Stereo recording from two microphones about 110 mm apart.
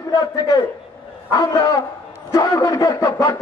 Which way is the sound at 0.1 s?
35° left (ahead or behind).